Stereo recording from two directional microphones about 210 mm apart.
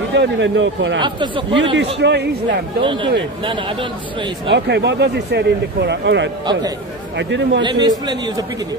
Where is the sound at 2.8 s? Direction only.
25° right (ahead or behind).